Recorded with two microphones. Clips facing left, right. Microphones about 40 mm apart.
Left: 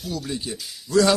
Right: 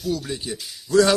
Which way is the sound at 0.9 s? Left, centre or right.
Right.